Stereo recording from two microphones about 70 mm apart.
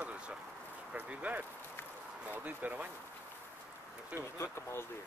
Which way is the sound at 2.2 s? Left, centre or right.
Right.